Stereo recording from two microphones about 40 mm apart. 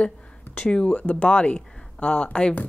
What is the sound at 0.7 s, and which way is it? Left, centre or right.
Speech, left.